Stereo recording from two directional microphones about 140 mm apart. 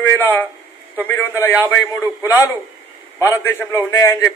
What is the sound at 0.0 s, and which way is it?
A man's voice, 15° left (ahead or behind).